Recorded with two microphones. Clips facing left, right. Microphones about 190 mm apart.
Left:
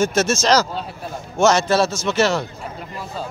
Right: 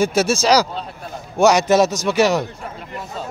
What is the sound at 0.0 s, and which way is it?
A man's voice, 10° right (ahead or behind).